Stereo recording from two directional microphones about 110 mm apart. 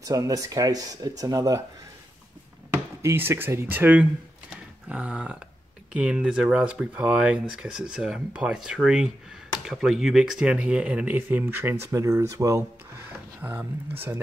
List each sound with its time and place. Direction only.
0.0 s speech: 30° right (ahead or behind)
2.7 s speech: 25° right (ahead or behind)
13.4 s speech: 15° right (ahead or behind)